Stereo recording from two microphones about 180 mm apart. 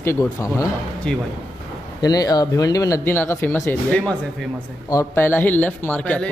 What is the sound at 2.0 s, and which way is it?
A man's voice, 20° left (ahead or behind).